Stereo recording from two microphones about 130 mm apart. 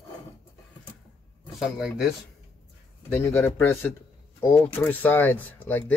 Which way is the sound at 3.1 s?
15° left (ahead or behind).